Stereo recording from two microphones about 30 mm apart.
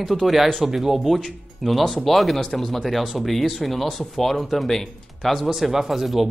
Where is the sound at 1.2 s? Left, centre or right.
Centre.